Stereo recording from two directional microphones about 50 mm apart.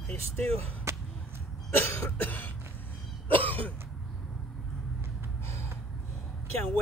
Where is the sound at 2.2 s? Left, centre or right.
Left.